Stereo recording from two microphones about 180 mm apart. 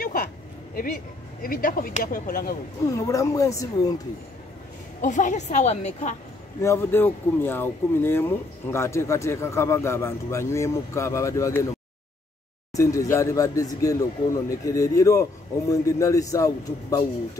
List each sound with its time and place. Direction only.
0.0 s a sound: 55° left (ahead or behind)
0.7 s speech: 50° left (ahead or behind)
2.8 s speech: 15° left (ahead or behind)
5.0 s a woman's voice: 45° left (ahead or behind)
6.6 s speech: 15° left (ahead or behind)
12.7 s speech: 15° left (ahead or behind)